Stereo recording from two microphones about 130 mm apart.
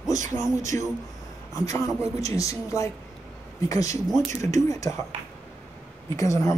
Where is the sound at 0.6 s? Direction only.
25° left (ahead or behind).